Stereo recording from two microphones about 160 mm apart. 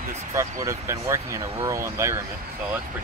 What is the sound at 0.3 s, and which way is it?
Speech, 20° right (ahead or behind).